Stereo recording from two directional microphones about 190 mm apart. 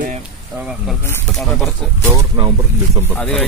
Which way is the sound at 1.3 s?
5° left (ahead or behind).